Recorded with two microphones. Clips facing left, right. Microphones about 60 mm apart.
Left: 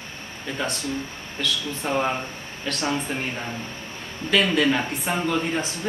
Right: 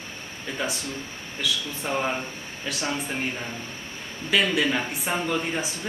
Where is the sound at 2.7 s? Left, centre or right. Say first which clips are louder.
Left 3 dB; centre.